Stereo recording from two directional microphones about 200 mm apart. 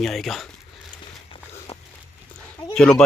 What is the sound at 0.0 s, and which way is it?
Speech, centre (ahead or behind).